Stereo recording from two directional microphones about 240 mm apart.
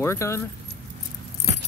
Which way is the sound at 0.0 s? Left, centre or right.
Centre.